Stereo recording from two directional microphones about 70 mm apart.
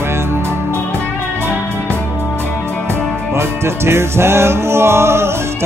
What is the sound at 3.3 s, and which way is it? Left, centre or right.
Music, right.